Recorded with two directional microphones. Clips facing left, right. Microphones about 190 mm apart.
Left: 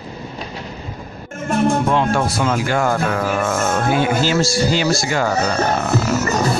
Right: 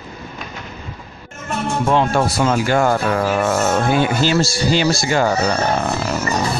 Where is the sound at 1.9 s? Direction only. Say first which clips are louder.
Right 1 dB; 35° right (ahead or behind).